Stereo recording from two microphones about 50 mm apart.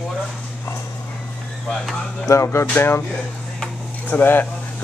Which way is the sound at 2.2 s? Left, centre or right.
Left.